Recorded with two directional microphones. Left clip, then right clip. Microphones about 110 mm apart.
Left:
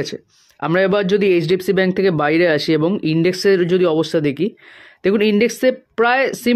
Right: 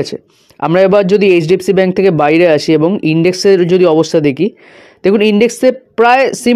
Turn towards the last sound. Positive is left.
turn(degrees=-35)  # may be behind; listen again after turning